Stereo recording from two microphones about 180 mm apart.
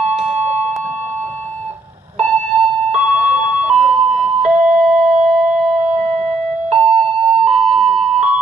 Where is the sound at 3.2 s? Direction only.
40° right (ahead or behind).